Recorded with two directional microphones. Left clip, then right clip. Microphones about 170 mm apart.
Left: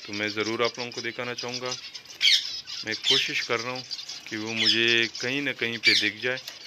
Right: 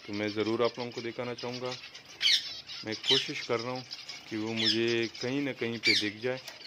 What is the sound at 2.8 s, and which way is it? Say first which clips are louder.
Speech: left 4 dB; 5° right (ahead or behind).